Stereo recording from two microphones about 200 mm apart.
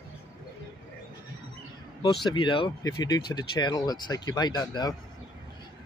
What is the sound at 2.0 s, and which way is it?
Speech, 25° left (ahead or behind).